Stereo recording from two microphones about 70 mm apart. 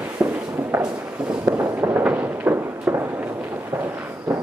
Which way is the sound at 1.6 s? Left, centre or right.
Right.